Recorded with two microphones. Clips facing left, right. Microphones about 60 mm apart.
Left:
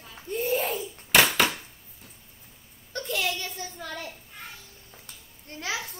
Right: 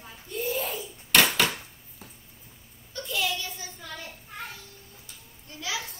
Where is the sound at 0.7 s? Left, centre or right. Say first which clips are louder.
Right 1 dB; centre.